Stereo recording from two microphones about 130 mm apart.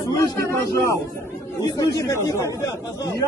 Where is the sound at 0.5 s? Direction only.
25° left (ahead or behind).